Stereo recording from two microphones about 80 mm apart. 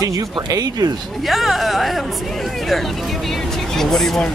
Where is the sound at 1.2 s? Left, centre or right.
Centre.